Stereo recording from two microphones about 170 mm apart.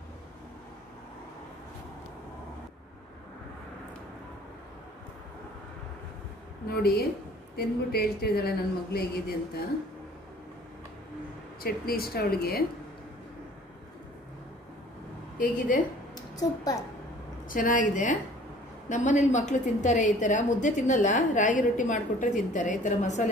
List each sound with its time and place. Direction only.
6.7 s a woman's voice: 65° left (ahead or behind)
11.6 s speech: 60° left (ahead or behind)
15.3 s a woman's voice: 55° left (ahead or behind)
16.2 s a woman's voice: 20° left (ahead or behind)
17.5 s a woman's voice: 50° left (ahead or behind)